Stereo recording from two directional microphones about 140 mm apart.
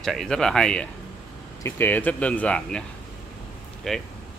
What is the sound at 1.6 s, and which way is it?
Speech, 15° left (ahead or behind).